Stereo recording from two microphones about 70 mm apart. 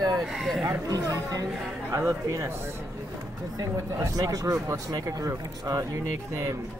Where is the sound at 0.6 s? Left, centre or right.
Right.